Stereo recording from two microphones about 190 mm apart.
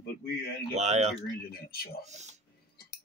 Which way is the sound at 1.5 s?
55° left (ahead or behind).